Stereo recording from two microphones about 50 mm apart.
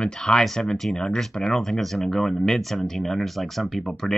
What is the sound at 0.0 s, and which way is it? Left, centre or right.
Speech, centre.